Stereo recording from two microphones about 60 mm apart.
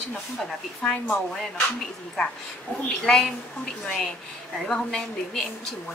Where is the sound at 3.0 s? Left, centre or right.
Centre.